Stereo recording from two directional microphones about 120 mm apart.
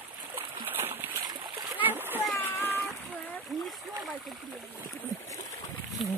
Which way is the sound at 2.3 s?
20° left (ahead or behind).